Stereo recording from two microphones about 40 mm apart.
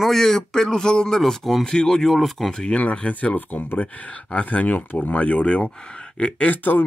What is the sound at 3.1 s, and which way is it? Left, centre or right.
Speech, left.